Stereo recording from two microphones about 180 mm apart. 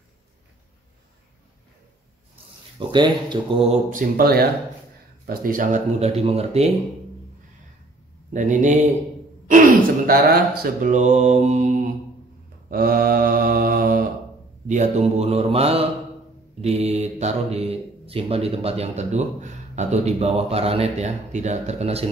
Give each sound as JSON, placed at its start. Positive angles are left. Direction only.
{"t": 2.9, "sound": "speech", "side_deg": -25}
{"t": 3.9, "sound": "speech", "side_deg": -55}
{"t": 8.3, "sound": "mantra", "side_deg": -45}
{"t": 12.6, "sound": "mantra", "side_deg": -55}
{"t": 14.7, "sound": "speech", "side_deg": -40}